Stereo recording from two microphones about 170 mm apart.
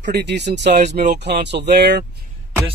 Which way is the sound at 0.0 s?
90° right.